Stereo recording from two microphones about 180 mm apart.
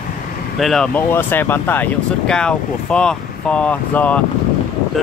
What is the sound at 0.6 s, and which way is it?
Speech, 5° left (ahead or behind).